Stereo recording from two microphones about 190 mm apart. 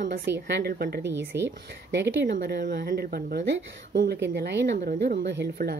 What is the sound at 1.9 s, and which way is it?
A woman's voice, 65° right (ahead or behind).